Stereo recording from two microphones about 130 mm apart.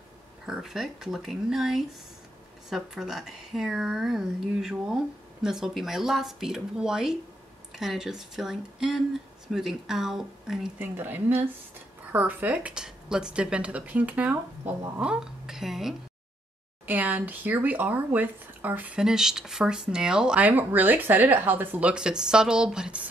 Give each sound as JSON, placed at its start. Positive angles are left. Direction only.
{"t": 0.5, "sound": "speech", "side_deg": -5}
{"t": 10.8, "sound": "speech", "side_deg": -15}
{"t": 16.8, "sound": "speech", "side_deg": -15}